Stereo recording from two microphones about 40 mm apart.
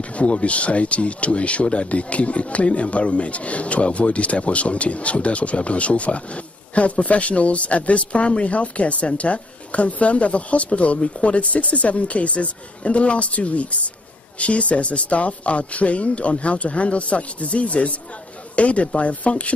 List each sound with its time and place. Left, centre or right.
0.1 s speech: left